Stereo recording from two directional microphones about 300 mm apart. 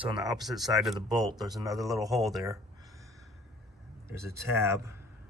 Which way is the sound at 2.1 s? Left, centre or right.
Centre.